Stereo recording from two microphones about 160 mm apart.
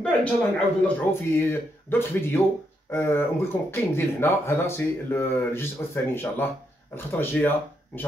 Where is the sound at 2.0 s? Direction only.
15° left (ahead or behind).